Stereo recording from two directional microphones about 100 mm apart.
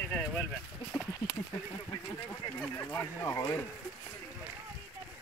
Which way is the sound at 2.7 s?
25° left (ahead or behind).